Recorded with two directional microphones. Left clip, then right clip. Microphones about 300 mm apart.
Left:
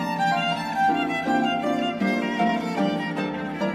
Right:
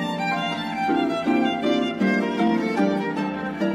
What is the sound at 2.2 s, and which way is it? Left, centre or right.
Music, centre.